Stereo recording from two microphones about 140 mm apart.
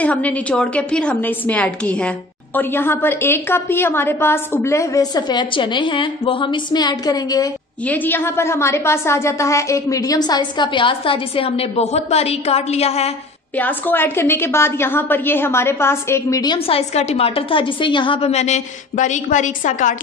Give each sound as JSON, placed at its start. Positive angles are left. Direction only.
{"t": 0.0, "sound": "a woman's voice", "side_deg": 10}
{"t": 7.8, "sound": "a woman's voice", "side_deg": 10}
{"t": 13.6, "sound": "a woman's voice", "side_deg": 15}
{"t": 16.5, "sound": "a woman's voice", "side_deg": 45}